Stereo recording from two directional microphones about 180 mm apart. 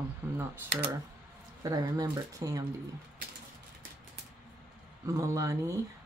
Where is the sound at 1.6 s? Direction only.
20° right (ahead or behind).